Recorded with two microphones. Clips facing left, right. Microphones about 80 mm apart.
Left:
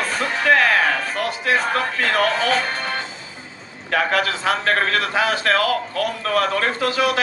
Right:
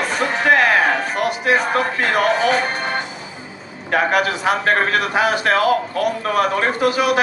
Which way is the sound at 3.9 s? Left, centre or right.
Right.